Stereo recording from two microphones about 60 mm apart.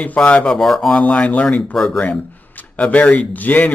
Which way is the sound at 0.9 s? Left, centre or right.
Left.